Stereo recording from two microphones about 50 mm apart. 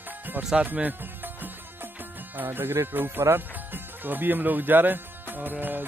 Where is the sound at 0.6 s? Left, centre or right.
Right.